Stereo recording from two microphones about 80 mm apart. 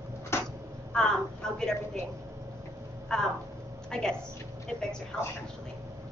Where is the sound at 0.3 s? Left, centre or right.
Left.